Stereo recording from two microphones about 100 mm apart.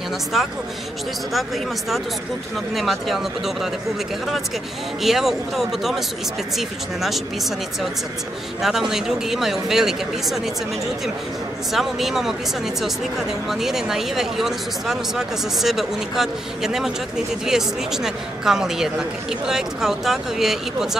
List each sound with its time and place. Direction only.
2.7 s speech: centre (ahead or behind)
5.0 s speech: centre (ahead or behind)
8.6 s speech: 5° right (ahead or behind)
11.7 s speech: centre (ahead or behind)
13.5 s speech: 5° right (ahead or behind)